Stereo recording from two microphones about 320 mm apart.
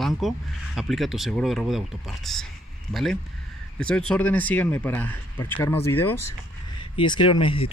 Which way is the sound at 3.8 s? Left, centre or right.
Centre.